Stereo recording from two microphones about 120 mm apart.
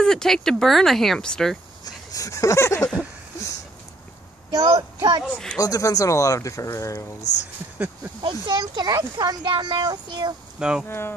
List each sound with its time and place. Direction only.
0.0 s speech: 5° left (ahead or behind)
1.9 s speech: 30° left (ahead or behind)
4.5 s speech: 30° right (ahead or behind)
5.6 s speech: 30° left (ahead or behind)
8.2 s speech: 40° right (ahead or behind)
10.6 s insect: 5° right (ahead or behind)
10.9 s speech: 20° left (ahead or behind)